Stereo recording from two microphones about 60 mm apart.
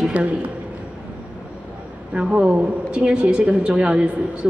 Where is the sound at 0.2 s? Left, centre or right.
Right.